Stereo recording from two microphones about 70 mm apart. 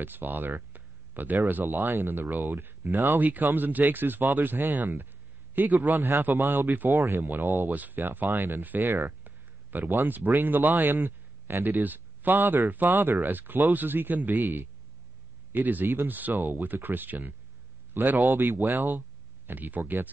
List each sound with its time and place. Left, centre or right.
0.0 s a man's voice: right
5.9 s speech: right
6.9 s speech: right
7.2 s speech: right
8.8 s a sound: right
10.0 s a man's voice: right